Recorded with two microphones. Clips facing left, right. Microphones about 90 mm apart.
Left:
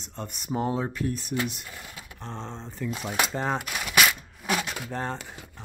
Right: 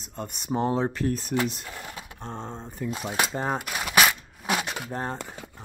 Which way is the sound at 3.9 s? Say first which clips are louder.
Right 2 dB; 35° right (ahead or behind).